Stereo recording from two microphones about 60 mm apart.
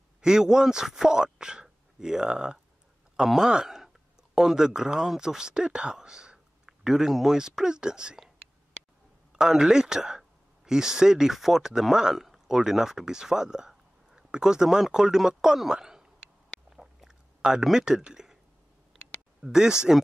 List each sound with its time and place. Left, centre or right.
0.2 s a man's voice: centre
9.4 s speech: centre
16.7 s chewing: centre
19.4 s speech: centre